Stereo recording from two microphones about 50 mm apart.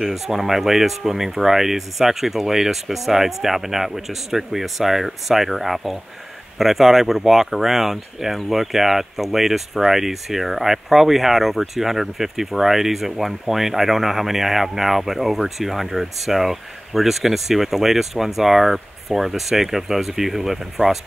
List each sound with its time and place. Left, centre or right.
0.0 s speech: centre